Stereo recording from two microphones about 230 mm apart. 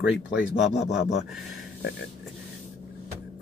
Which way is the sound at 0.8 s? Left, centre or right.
Left.